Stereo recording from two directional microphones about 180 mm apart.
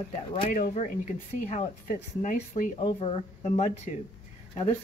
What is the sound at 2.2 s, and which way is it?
Speech, 45° left (ahead or behind).